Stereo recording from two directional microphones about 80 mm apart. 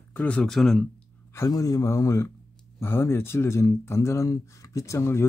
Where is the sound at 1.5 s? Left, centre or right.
Left.